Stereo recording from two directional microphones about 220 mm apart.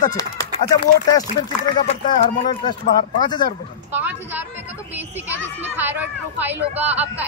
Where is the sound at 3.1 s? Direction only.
20° left (ahead or behind).